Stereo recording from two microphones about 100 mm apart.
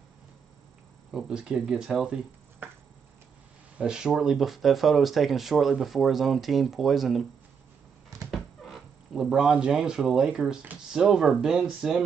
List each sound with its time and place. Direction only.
1.1 s speech: 10° right (ahead or behind)
3.7 s speech: 10° right (ahead or behind)
8.3 s speech: centre (ahead or behind)